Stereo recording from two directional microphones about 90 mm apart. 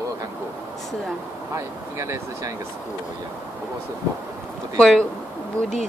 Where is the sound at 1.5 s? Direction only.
35° right (ahead or behind).